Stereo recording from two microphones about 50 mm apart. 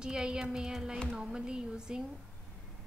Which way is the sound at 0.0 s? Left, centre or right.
Centre.